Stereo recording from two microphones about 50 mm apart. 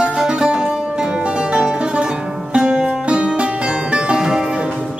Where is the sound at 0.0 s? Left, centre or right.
Centre.